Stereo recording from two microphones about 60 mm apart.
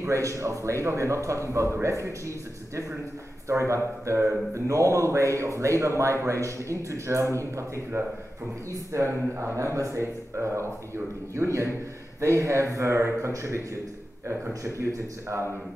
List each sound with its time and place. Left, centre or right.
0.0 s speech: right
14.5 s speech: right